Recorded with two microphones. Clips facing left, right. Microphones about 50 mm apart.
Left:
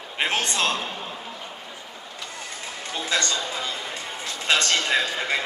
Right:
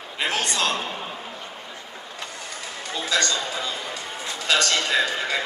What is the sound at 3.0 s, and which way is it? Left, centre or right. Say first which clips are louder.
Speech: right 2 dB; left.